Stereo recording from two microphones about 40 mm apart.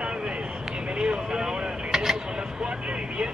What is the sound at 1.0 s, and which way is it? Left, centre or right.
Vehicle, right.